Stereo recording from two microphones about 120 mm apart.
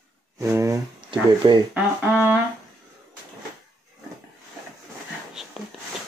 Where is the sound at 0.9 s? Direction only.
40° right (ahead or behind).